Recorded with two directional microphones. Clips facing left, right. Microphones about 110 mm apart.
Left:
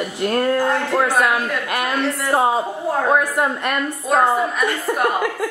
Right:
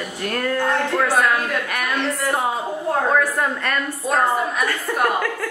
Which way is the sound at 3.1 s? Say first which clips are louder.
Left 2 dB; 15° left (ahead or behind).